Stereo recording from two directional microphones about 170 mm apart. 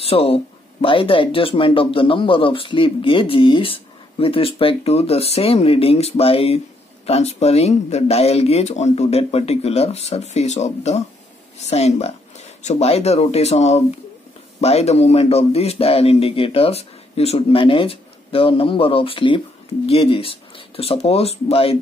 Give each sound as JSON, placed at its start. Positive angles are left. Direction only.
{"t": 0.0, "sound": "speech", "side_deg": 35}